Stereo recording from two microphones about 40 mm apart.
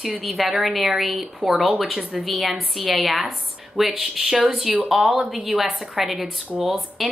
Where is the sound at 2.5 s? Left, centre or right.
Right.